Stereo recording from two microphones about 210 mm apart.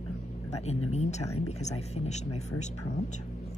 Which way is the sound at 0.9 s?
30° left (ahead or behind).